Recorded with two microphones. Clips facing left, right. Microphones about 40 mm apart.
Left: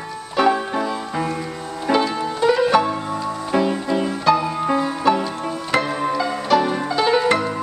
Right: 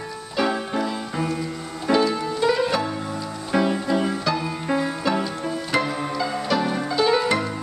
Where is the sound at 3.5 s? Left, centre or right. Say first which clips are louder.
Left 1 dB; centre.